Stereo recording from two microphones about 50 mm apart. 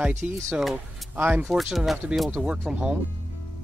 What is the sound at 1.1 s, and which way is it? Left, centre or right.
Speech, right.